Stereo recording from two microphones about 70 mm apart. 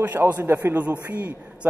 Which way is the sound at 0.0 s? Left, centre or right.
Right.